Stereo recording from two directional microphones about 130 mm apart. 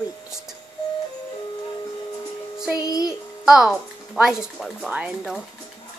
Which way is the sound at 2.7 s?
25° left (ahead or behind).